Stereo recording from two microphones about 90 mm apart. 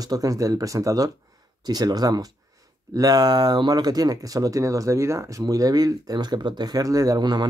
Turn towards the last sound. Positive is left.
turn(degrees=-55)  # may be behind; listen again after turning